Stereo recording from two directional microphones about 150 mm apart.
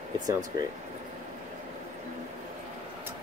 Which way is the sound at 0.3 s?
25° right (ahead or behind).